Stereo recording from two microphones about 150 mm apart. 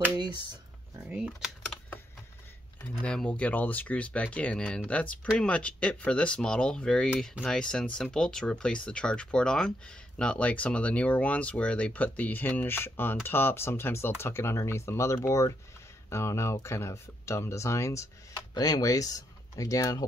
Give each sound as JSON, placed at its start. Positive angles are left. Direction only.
{"t": 0.2, "sound": "a sound", "side_deg": -30}
{"t": 1.0, "sound": "speech", "side_deg": -5}
{"t": 2.8, "sound": "speech", "side_deg": 10}